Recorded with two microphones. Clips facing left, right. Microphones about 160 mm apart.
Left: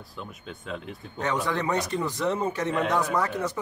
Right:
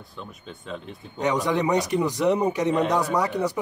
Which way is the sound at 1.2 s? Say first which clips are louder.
Right 4 dB; 15° right (ahead or behind).